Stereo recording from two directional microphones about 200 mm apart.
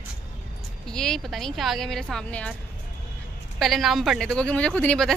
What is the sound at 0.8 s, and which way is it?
Speech, 5° left (ahead or behind).